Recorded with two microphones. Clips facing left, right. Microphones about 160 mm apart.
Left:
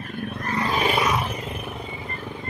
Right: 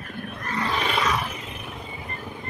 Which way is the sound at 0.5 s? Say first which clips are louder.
Left 3 dB; 45° left (ahead or behind).